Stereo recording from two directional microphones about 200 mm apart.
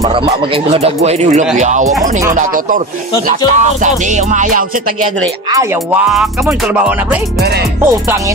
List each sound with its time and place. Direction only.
0.7 s music: 30° right (ahead or behind)
5.5 s music: 15° right (ahead or behind)